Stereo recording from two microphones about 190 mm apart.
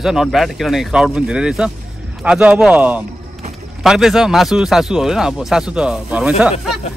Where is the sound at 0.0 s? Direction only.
Centre (ahead or behind).